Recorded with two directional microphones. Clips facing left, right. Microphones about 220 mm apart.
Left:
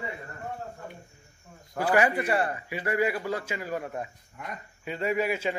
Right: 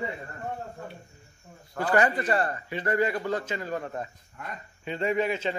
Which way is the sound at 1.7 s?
10° left (ahead or behind).